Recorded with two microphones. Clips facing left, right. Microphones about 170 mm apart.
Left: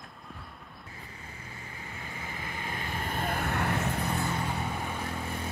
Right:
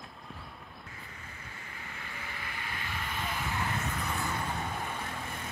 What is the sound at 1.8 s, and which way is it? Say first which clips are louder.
Vehicle: left 3 dB; 25° left (ahead or behind).